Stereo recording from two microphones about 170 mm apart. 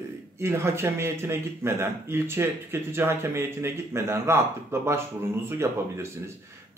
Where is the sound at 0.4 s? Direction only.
15° right (ahead or behind).